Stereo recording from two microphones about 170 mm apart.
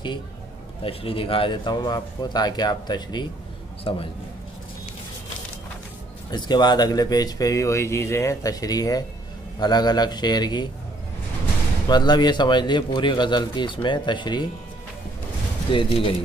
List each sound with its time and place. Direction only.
0.8 s speech: 30° left (ahead or behind)
6.3 s speech: 25° left (ahead or behind)
11.9 s speech: 25° left (ahead or behind)
15.7 s speech: 30° left (ahead or behind)